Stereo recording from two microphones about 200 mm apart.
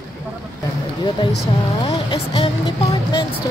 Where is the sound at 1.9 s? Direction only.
25° left (ahead or behind).